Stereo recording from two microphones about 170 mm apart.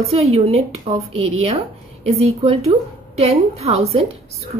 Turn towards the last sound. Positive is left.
turn(degrees=-40)  # may be behind; listen again after turning